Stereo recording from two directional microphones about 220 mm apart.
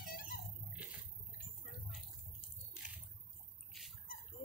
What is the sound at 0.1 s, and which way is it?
Music, 40° left (ahead or behind).